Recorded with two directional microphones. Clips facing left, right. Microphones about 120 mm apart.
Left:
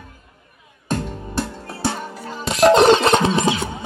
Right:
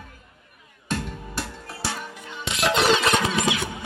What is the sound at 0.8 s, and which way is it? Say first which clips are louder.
Music: left 5 dB; 40° left (ahead or behind).